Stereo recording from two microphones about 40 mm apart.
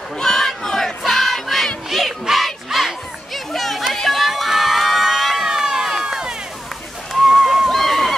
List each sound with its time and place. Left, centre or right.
0.2 s crowd: centre
0.5 s battle cry: centre
1.9 s crowd: centre
3.5 s a sound: centre
4.1 s crowd: centre
5.5 s run: centre
7.2 s a sound: centre